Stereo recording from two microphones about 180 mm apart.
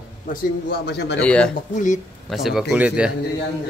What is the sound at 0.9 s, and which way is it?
Speech, 70° left (ahead or behind).